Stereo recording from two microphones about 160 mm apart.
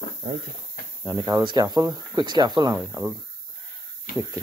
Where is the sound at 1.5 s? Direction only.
25° right (ahead or behind).